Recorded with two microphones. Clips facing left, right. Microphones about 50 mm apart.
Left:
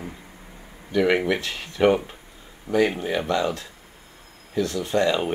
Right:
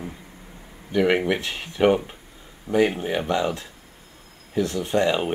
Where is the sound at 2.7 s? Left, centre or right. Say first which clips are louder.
Right 1 dB; centre.